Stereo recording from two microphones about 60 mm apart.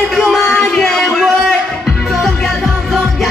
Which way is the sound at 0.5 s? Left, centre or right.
Centre.